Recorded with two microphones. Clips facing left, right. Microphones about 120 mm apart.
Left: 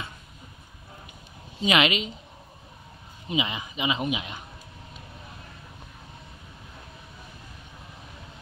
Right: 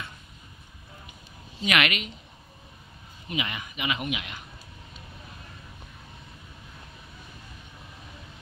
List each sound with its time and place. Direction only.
1.7 s speech: 25° left (ahead or behind)
3.3 s speech: 20° left (ahead or behind)